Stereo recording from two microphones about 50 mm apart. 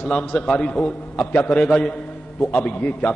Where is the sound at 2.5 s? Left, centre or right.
Left.